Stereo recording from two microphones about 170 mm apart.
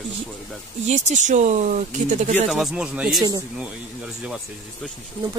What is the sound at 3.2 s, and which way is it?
Speech, 20° right (ahead or behind).